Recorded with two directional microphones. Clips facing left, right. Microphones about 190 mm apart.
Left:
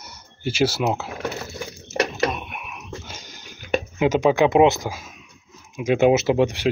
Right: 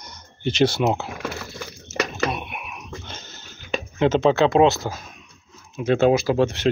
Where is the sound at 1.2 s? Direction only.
20° left (ahead or behind).